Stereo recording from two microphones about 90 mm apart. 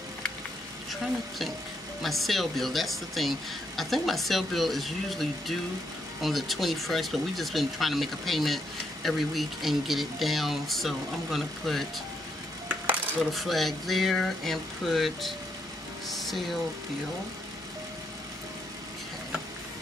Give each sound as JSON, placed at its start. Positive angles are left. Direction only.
{"t": 2.0, "sound": "speech", "side_deg": 0}
{"t": 12.6, "sound": "dishes", "side_deg": -15}
{"t": 13.3, "sound": "speech", "side_deg": 0}
{"t": 16.1, "sound": "a sound", "side_deg": 0}